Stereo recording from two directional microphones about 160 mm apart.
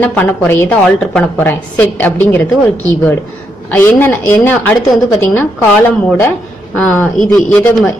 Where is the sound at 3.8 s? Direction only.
10° left (ahead or behind).